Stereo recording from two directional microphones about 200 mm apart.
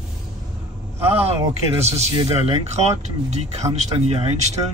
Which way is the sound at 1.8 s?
30° right (ahead or behind).